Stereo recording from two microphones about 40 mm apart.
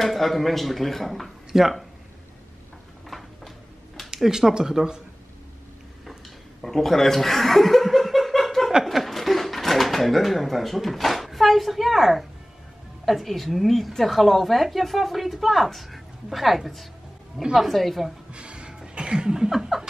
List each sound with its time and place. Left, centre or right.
0.0 s a woman's voice: centre
1.5 s speech: centre
3.1 s a sound: centre
4.1 s speech: centre
6.6 s laughter: centre
8.8 s a sound: centre
13.0 s a woman's voice: centre
17.4 s speech: centre
17.6 s a woman's voice: centre
18.3 s a sound: right
19.5 s speech: centre